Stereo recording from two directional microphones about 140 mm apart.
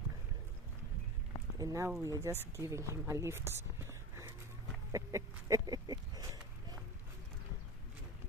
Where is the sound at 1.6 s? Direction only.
25° right (ahead or behind).